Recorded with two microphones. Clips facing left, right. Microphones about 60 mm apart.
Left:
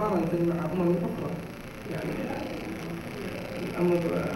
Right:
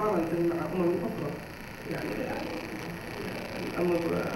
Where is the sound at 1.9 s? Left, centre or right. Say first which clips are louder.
Left 1 dB; right.